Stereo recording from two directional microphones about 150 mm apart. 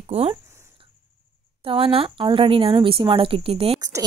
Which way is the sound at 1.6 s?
35° right (ahead or behind).